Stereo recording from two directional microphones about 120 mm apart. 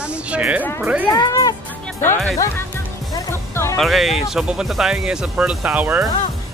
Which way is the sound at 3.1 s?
25° left (ahead or behind).